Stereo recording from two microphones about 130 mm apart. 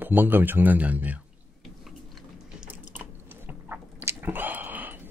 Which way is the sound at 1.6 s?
Centre (ahead or behind).